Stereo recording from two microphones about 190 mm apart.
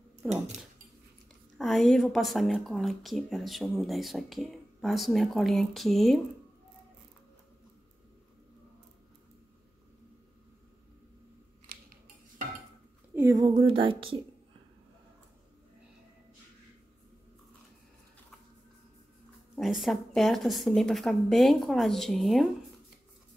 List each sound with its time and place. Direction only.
1.6 s speech: centre (ahead or behind)
13.1 s a woman's voice: 15° right (ahead or behind)
19.5 s speech: centre (ahead or behind)